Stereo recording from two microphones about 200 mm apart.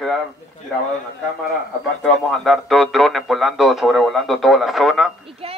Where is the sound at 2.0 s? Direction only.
Centre (ahead or behind).